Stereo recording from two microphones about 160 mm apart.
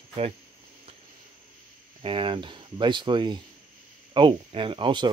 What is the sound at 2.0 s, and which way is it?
Speech, 35° right (ahead or behind).